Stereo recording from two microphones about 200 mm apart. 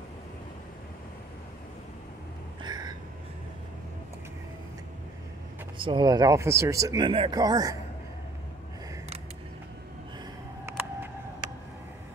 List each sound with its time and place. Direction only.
2.6 s a sound: 20° right (ahead or behind)
5.8 s speech: 25° right (ahead or behind)
10.6 s vehicle: 10° right (ahead or behind)